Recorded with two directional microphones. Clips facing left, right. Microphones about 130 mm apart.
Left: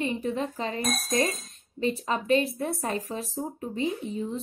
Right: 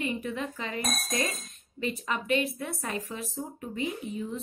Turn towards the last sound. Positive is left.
turn(degrees=30)  # may be behind; listen again after turning